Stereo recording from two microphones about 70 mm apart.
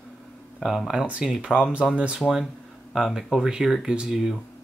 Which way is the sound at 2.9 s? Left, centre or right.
Centre.